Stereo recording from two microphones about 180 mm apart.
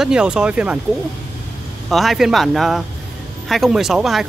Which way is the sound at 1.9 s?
Centre (ahead or behind).